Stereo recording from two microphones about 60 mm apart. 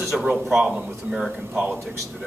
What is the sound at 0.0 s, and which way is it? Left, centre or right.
Speech, centre.